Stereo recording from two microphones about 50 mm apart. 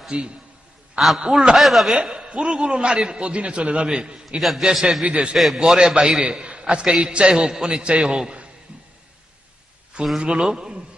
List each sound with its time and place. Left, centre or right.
0.1 s a man's voice: right
0.9 s a man's voice: centre
2.0 s a man's voice: centre
4.4 s a man's voice: centre
5.0 s a man's voice: right
5.3 s a man's voice: centre
5.6 s a man's voice: centre
8.2 s a sound: centre
10.2 s a man's voice: centre